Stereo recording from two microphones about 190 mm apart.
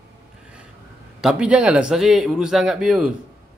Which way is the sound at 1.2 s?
5° right (ahead or behind).